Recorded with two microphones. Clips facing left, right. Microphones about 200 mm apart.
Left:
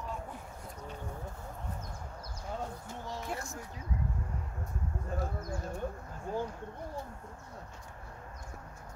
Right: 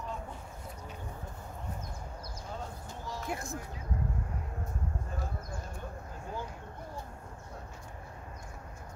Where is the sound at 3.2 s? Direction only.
15° right (ahead or behind).